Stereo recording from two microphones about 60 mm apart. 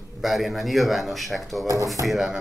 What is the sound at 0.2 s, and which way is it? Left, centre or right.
Speech, centre.